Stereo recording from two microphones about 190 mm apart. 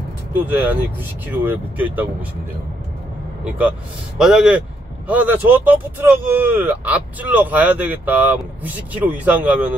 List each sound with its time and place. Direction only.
0.3 s speech: 10° right (ahead or behind)
4.2 s speech: centre (ahead or behind)